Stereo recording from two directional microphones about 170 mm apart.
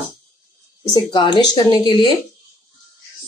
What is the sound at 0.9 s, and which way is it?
Speech, 25° left (ahead or behind).